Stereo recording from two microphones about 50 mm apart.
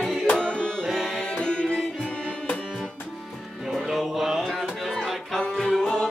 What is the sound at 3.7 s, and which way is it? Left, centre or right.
Music, centre.